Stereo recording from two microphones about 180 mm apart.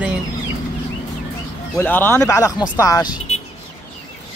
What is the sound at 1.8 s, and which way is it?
A man's voice, 10° left (ahead or behind).